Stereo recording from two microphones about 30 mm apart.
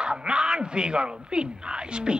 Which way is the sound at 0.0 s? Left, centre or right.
Right.